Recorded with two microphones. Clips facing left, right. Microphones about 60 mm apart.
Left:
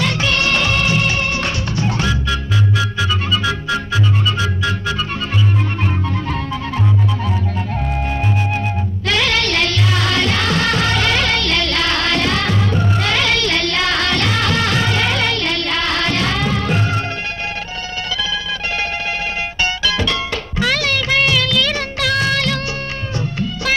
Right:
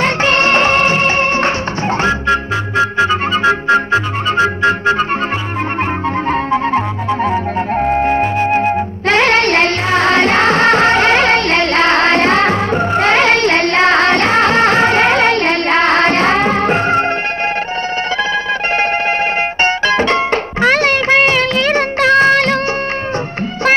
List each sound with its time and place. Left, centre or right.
0.0 s music: right
6.2 s music: right
7.2 s flute: right
19.6 s music: right